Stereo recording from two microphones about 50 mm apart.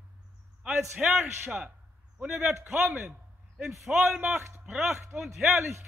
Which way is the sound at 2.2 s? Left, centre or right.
Centre.